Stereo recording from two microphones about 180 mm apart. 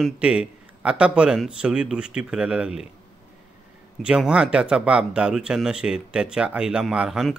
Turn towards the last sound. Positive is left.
turn(degrees=-5)  # may be behind; listen again after turning